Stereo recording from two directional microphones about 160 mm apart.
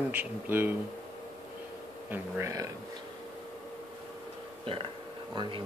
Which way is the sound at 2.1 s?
20° right (ahead or behind).